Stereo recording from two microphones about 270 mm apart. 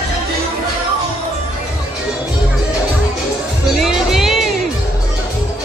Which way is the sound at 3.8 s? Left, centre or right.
Centre.